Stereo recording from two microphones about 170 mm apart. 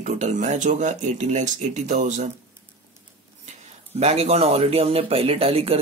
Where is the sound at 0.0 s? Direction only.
45° right (ahead or behind).